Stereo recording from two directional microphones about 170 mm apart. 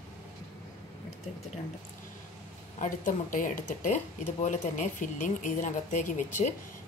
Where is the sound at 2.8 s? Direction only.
50° left (ahead or behind).